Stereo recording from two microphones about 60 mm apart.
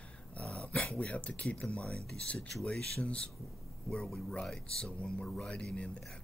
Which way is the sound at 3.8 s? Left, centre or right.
Centre.